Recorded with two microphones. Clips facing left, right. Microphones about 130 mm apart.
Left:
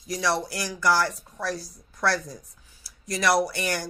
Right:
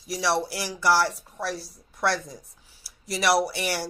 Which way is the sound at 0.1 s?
25° right (ahead or behind).